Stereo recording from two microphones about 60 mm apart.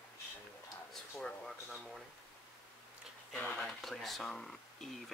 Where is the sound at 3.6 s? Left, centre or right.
Centre.